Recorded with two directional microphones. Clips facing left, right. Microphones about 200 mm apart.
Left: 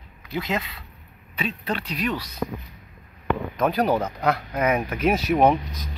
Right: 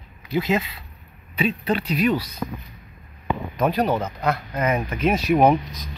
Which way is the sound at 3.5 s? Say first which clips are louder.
Right 1 dB; centre (ahead or behind).